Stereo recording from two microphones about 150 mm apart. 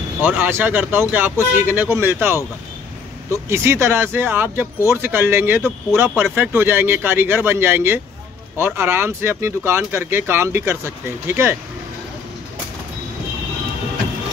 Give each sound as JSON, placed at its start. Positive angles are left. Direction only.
{"t": 0.2, "sound": "speech", "side_deg": -15}